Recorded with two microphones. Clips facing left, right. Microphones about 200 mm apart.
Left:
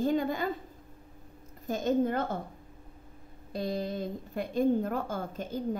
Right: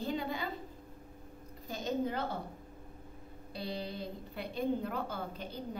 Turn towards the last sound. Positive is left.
turn(degrees=45)  # may be behind; listen again after turning